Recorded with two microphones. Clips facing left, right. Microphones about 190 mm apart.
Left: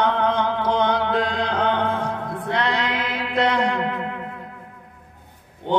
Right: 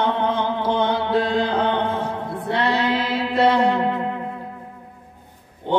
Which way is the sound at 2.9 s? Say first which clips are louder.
Right 4 dB; 30° right (ahead or behind).